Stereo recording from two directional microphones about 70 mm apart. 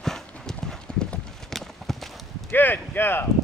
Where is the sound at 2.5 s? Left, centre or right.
Left.